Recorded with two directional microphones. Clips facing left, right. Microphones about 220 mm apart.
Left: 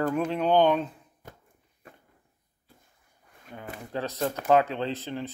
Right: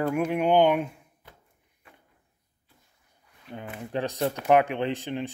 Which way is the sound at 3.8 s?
15° right (ahead or behind).